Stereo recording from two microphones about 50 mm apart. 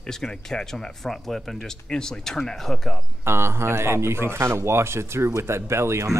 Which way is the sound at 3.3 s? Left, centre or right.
Right.